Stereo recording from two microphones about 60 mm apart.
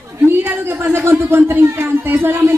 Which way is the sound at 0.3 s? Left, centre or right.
Right.